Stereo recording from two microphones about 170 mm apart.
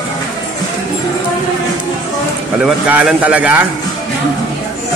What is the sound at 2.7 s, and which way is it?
A man's voice, 5° right (ahead or behind).